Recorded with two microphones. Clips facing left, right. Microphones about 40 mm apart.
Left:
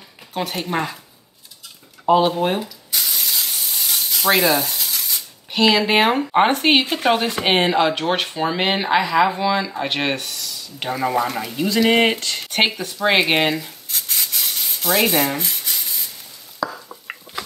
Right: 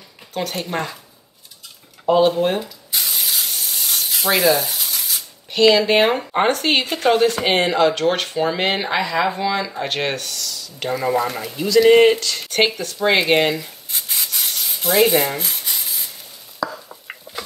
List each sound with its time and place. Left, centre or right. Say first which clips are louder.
0.3 s speech: left 1 dB; centre
2.0 s speech: right 1 dB; centre
2.9 s spray: right 1 dB; centre
4.3 s a sound: even; centre
5.5 s speech: right 2 dB; centre
6.3 s speech: left 2 dB; left
11.9 s speech: right 6 dB; left
12.2 s speech: right 1 dB; left; by 13.7 s centre
13.8 s rub: even; centre